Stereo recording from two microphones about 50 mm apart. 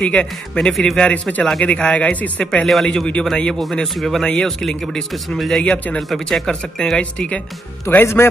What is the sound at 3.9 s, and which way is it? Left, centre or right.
Speech, centre.